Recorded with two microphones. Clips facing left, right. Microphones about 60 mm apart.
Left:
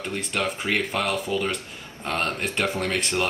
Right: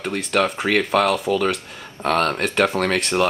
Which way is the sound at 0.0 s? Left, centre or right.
Right.